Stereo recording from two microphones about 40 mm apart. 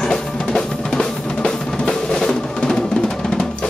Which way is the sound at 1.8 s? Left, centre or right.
Centre.